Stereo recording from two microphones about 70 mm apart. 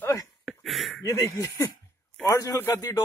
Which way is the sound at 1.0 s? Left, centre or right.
Left.